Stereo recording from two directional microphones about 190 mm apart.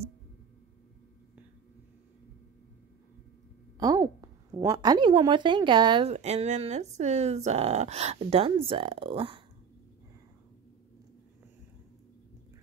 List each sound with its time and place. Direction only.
3.8 s a woman's voice: 20° right (ahead or behind)
6.1 s speech: 35° right (ahead or behind)